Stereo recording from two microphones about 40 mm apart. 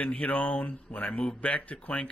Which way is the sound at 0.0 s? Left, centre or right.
Left.